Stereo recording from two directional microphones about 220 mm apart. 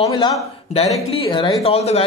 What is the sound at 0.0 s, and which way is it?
Speech, 20° left (ahead or behind).